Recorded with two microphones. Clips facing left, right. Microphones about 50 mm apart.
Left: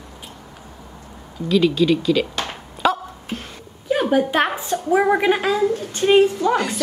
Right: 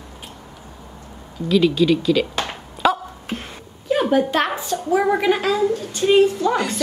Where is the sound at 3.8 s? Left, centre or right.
Centre.